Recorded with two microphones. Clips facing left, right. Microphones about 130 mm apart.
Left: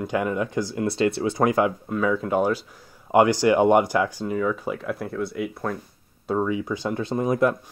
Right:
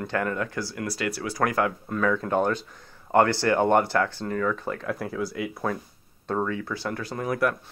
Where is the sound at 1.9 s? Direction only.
5° left (ahead or behind).